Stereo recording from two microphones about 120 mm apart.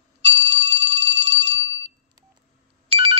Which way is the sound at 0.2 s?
60° right (ahead or behind).